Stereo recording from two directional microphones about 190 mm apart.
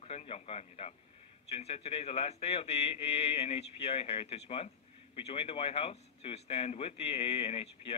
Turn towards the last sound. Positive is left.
turn(degrees=30)  # may be behind; listen again after turning